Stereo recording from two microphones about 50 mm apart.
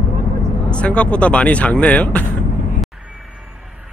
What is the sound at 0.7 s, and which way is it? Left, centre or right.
Speech, left.